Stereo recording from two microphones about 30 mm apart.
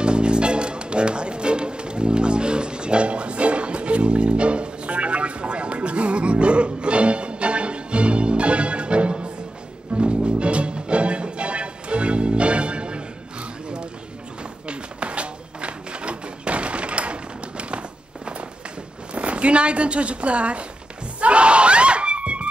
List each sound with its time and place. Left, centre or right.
0.0 s music: right
14.7 s a sound: right
19.1 s zipper: right
21.2 s screaming: right